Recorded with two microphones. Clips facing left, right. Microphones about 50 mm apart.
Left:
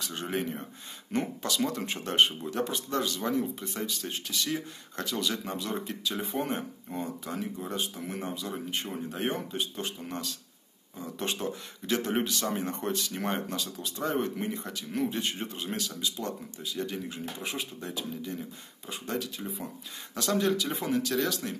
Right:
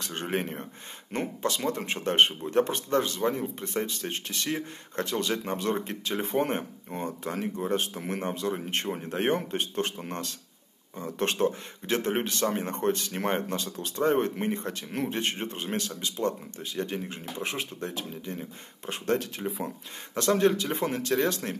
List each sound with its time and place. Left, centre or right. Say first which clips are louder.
0.0 s speech: right 2 dB; right